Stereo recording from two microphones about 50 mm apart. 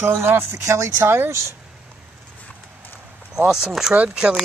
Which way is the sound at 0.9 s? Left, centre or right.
Right.